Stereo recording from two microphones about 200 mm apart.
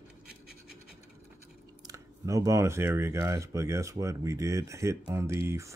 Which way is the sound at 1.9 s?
15° right (ahead or behind).